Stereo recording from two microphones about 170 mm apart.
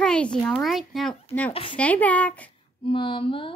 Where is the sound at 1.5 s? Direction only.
35° left (ahead or behind).